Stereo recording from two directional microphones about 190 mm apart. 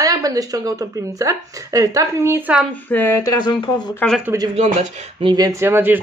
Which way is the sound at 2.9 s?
10° left (ahead or behind).